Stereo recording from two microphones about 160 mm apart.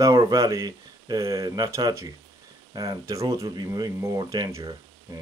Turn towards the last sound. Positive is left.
turn(degrees=-25)  # may be behind; listen again after turning